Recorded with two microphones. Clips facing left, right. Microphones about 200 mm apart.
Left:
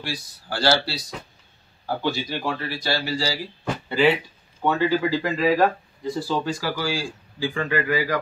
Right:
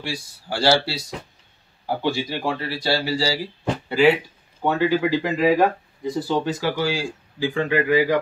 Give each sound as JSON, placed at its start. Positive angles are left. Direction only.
{"t": 0.0, "sound": "speech", "side_deg": -25}
{"t": 3.9, "sound": "speech", "side_deg": -10}